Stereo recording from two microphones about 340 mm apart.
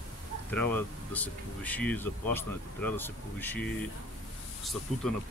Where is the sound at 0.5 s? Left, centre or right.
Centre.